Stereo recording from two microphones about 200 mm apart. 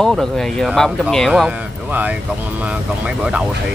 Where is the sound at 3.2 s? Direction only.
5° right (ahead or behind).